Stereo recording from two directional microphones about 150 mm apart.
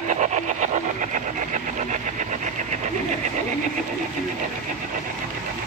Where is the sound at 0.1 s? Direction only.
55° right (ahead or behind).